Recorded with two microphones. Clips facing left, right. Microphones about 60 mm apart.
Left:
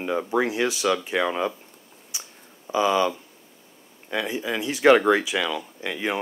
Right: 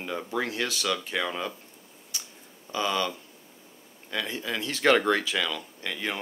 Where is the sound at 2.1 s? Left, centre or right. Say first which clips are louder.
Left 1 dB; centre.